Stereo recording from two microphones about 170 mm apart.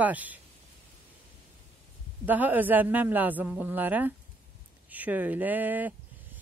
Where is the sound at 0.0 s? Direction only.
10° right (ahead or behind).